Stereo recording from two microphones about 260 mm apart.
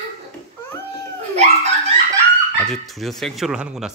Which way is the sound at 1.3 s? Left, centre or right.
Right.